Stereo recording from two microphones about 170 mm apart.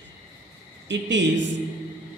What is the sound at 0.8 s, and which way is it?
Speech, 90° right.